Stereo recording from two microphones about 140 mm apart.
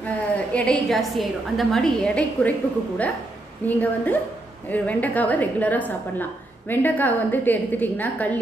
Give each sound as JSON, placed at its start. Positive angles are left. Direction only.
{"t": 0.0, "sound": "a woman's voice", "side_deg": 10}
{"t": 3.6, "sound": "a woman's voice", "side_deg": 10}